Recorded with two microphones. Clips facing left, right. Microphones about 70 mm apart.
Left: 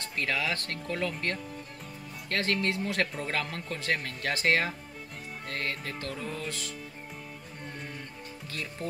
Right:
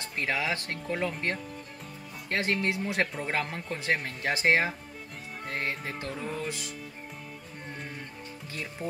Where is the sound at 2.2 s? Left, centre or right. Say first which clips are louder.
Right 1 dB; right.